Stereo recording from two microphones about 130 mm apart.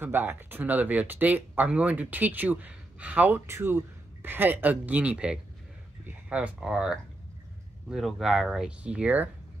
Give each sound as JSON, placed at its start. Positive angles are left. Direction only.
{"t": 0.0, "sound": "speech", "side_deg": -15}